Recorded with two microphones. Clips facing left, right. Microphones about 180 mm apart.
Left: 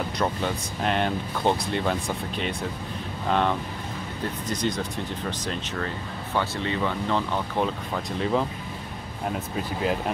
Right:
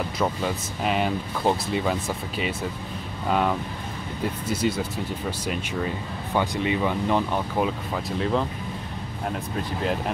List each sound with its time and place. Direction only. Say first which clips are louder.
0.2 s speech: right 1 dB; 5° right (ahead or behind)